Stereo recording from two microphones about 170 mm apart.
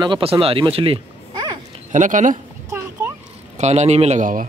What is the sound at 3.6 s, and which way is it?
Speech, 40° right (ahead or behind).